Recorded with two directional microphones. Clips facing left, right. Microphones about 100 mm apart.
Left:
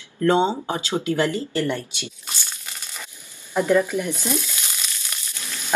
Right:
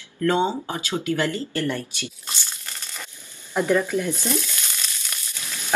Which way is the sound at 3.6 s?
15° left (ahead or behind).